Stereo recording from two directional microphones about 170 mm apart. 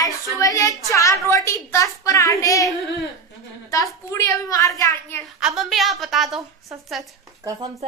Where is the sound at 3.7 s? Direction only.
20° left (ahead or behind).